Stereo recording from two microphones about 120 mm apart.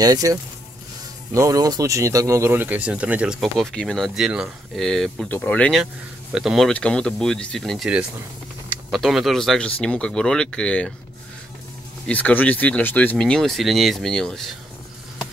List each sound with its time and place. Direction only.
0.0 s speech: 30° right (ahead or behind); by 5.3 s 5° left (ahead or behind)
5.3 s speech: 15° left (ahead or behind)
12.1 s speech: 15° left (ahead or behind)